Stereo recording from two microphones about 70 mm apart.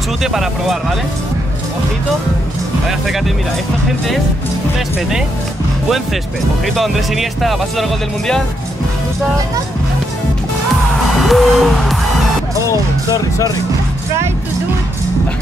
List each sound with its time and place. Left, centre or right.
0.2 s speech: centre
6.6 s speech: centre
10.7 s music: centre
12.6 s speech: left